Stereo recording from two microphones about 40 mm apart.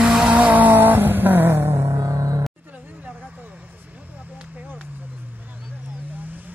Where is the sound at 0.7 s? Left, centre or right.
Right.